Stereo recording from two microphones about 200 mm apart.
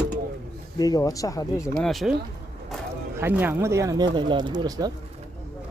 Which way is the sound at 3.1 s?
10° right (ahead or behind).